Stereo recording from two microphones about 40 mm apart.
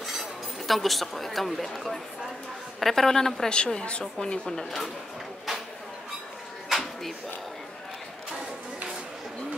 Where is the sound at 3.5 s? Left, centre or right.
Left.